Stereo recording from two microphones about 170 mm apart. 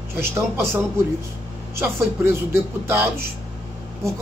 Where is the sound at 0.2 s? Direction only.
15° right (ahead or behind).